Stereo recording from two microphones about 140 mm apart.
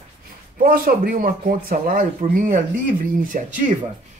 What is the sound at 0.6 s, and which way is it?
Speech, 90° right.